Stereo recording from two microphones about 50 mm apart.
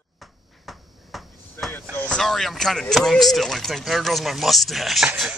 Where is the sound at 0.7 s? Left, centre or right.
Centre.